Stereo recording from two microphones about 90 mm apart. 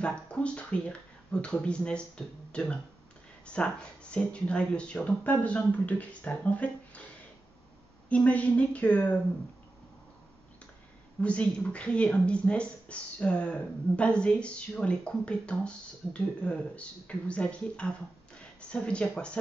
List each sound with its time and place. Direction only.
0.0 s speech: 10° left (ahead or behind)
8.1 s speech: 15° left (ahead or behind)
11.1 s speech: 15° left (ahead or behind)